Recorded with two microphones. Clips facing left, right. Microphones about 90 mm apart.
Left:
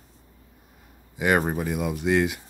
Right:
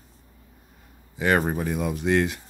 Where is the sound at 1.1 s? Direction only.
10° left (ahead or behind).